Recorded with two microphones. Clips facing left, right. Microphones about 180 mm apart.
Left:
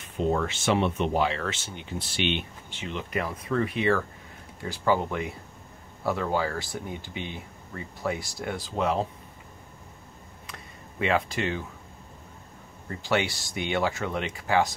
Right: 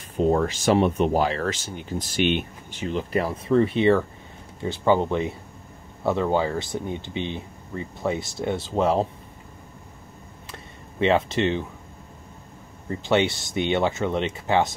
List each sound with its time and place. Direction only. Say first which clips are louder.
0.2 s speech: right 5 dB; 40° right (ahead or behind)
10.4 s a sound: right 3 dB; 30° right (ahead or behind)
13.0 s speech: right 5 dB; 20° right (ahead or behind)